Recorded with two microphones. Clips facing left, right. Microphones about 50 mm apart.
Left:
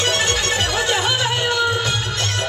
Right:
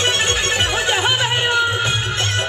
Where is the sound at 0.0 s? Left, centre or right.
Right.